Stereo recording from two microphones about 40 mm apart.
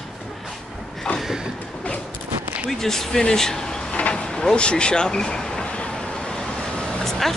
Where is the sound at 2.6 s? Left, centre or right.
Centre.